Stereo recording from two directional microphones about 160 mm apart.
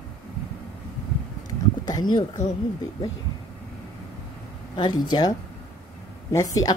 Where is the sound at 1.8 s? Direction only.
25° left (ahead or behind).